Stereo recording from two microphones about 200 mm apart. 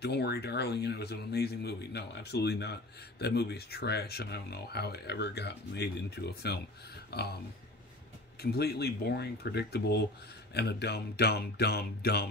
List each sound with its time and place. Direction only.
0.0 s speech: 55° left (ahead or behind)
8.4 s speech: 55° left (ahead or behind)